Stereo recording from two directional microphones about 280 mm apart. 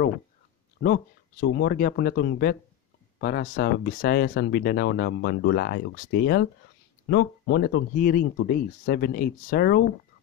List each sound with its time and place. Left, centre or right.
0.8 s speech: left